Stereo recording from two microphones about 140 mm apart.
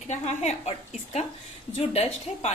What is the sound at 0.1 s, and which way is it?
A woman's voice, 55° left (ahead or behind).